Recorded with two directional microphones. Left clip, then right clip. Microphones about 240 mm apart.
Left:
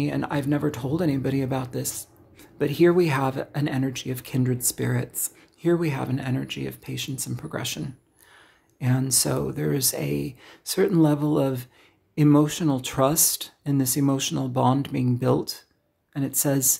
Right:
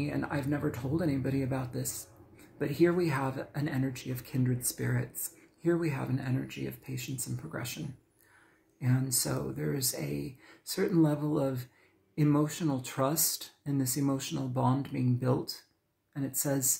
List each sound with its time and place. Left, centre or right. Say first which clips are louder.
0.0 s speech: left 7 dB; left
8.7 s speech: left 8 dB; left